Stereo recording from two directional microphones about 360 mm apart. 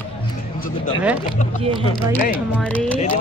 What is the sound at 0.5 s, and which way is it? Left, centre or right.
Speech, left.